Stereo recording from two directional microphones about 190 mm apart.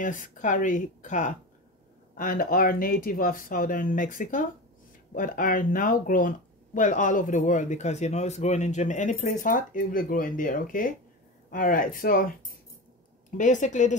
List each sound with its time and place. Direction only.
0.0 s speech: 40° left (ahead or behind)
13.4 s a woman's voice: 40° left (ahead or behind)